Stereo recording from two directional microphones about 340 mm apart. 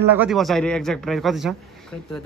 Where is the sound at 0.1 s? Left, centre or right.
Centre.